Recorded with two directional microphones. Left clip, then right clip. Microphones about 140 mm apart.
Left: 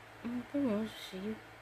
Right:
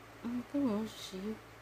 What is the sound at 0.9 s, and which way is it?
Speech, 60° right (ahead or behind).